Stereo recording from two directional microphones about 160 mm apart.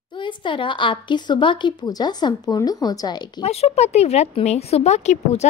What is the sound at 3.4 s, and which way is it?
A woman's voice, 40° left (ahead or behind).